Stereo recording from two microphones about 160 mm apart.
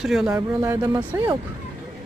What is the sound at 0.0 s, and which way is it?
Speech, centre (ahead or behind).